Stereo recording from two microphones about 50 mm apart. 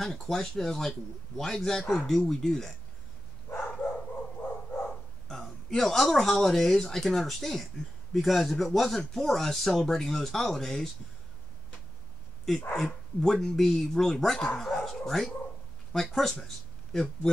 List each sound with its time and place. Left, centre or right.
0.0 s speech: centre
4.4 s a sound: left
5.3 s speech: centre
12.7 s speech: centre